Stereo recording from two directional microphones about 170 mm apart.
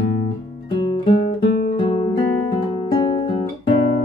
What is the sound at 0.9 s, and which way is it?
Guitar, 30° left (ahead or behind).